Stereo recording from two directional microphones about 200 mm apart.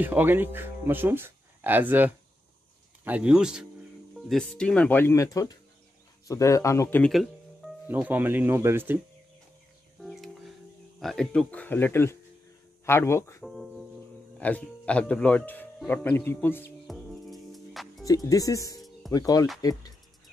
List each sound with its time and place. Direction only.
0.0 s speech: 10° right (ahead or behind)
9.9 s music: centre (ahead or behind)
11.0 s speech: centre (ahead or behind)
13.4 s music: centre (ahead or behind)
14.4 s speech: 5° left (ahead or behind)
16.8 s music: centre (ahead or behind)
18.0 s speech: 15° left (ahead or behind)